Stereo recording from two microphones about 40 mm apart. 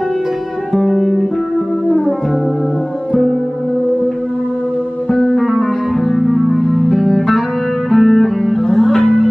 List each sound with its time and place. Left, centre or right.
0.7 s guitar: centre
5.1 s music: centre
5.4 s music: centre
9.0 s music: left